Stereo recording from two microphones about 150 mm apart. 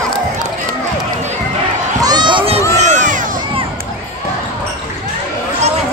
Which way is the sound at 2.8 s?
55° right (ahead or behind).